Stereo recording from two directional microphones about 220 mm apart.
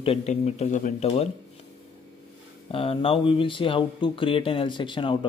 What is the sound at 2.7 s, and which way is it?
Speech, 25° left (ahead or behind).